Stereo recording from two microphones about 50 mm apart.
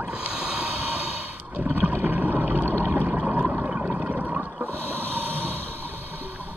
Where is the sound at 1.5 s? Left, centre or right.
Right.